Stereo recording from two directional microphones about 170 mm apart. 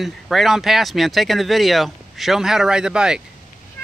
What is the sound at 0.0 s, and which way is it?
Speech, centre (ahead or behind).